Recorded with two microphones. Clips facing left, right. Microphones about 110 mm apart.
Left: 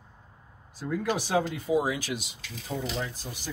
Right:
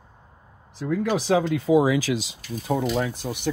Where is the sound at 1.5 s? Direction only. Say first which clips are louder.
Right 8 dB; 90° right.